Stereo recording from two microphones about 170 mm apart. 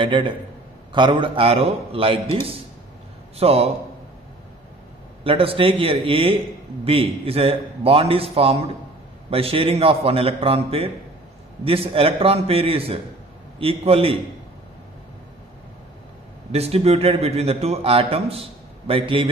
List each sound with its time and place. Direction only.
0.0 s a man's voice: 30° right (ahead or behind)
3.3 s a man's voice: 35° right (ahead or behind)
5.2 s a man's voice: 35° right (ahead or behind)
16.5 s a man's voice: 35° right (ahead or behind)